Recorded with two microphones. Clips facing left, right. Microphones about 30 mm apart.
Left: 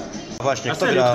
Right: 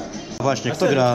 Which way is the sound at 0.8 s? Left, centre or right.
Left.